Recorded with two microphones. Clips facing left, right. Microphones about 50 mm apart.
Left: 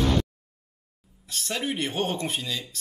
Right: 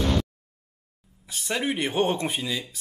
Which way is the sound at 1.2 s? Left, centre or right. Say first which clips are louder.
Right 2 dB; centre.